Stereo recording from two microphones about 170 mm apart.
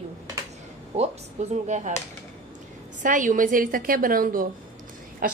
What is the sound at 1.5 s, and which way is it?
Speech, 40° right (ahead or behind).